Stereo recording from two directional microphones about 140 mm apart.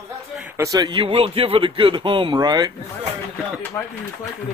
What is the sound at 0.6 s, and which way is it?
Speech, 25° right (ahead or behind).